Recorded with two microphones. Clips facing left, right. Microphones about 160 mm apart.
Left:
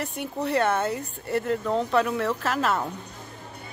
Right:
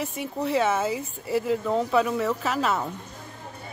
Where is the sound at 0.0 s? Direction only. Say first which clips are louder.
Right 1 dB; centre (ahead or behind).